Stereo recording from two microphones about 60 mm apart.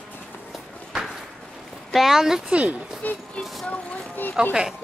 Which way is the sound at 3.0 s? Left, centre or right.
Left.